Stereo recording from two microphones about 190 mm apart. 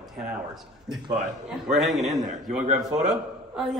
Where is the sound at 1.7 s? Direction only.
Centre (ahead or behind).